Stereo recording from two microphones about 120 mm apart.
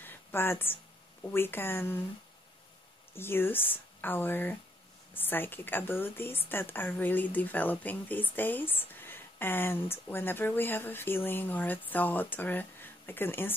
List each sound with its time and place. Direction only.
0.0 s a sound: 20° left (ahead or behind)
1.2 s speech: 20° left (ahead or behind)
3.2 s a woman's voice: 20° left (ahead or behind)